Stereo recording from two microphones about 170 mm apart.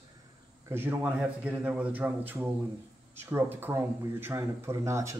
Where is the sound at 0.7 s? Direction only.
10° right (ahead or behind).